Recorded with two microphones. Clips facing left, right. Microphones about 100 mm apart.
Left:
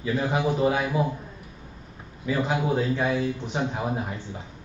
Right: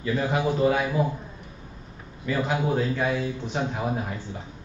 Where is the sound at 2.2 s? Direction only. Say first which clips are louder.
Even; 15° left (ahead or behind).